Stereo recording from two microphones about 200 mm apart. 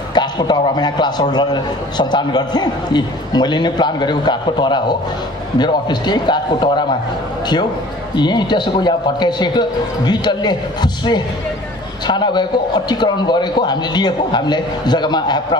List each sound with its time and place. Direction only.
0.1 s a man's voice: 20° left (ahead or behind)
8.1 s a man's voice: 20° left (ahead or behind)